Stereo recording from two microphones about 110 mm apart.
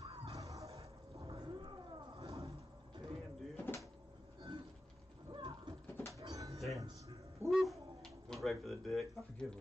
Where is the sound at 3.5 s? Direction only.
20° left (ahead or behind).